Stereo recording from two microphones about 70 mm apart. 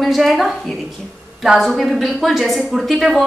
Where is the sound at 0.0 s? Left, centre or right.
Centre.